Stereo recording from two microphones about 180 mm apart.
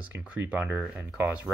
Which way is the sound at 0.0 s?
5° right (ahead or behind).